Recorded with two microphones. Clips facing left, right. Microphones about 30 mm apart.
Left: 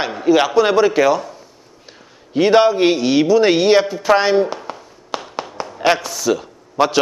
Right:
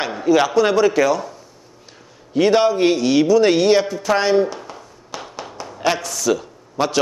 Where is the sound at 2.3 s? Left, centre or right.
Centre.